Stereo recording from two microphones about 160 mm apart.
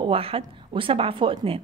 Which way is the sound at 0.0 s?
35° right (ahead or behind).